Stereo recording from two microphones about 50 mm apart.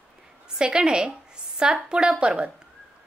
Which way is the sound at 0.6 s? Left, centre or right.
Centre.